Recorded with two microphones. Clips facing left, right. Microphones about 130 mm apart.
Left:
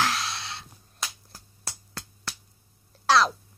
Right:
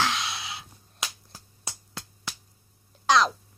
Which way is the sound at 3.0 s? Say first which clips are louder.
Even; centre (ahead or behind).